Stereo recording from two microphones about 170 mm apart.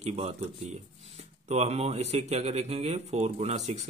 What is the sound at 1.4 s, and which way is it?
Speech, 40° right (ahead or behind).